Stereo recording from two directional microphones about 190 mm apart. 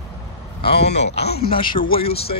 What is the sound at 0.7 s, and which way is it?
Speech, 60° left (ahead or behind).